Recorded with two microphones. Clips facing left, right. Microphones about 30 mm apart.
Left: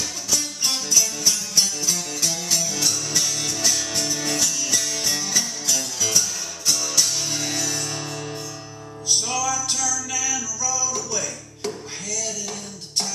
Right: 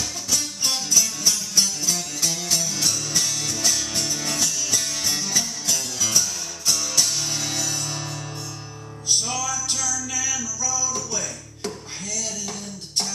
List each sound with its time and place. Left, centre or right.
0.0 s music: centre